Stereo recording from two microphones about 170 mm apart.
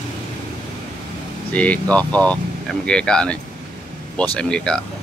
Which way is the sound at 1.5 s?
10° left (ahead or behind).